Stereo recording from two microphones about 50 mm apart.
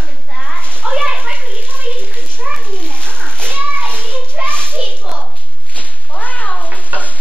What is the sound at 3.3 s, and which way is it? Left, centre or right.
Children playing, left.